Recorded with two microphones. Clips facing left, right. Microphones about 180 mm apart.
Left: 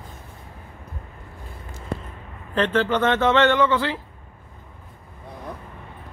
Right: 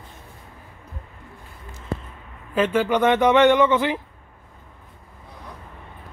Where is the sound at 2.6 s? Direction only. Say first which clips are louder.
Right 1 dB; 10° right (ahead or behind).